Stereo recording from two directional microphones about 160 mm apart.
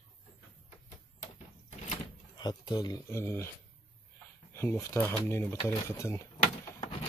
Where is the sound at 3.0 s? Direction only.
15° left (ahead or behind).